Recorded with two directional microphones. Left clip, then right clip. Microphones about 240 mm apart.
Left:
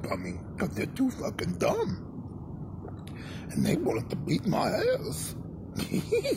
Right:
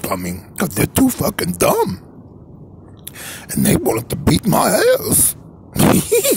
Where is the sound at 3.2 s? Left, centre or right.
Right.